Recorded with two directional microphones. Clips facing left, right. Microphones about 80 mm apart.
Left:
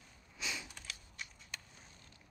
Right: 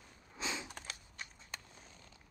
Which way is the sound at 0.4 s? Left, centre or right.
Right.